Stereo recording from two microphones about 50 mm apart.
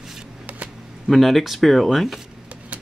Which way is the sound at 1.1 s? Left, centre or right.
Centre.